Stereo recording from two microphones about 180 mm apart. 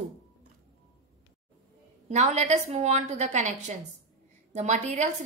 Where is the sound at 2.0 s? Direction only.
40° right (ahead or behind).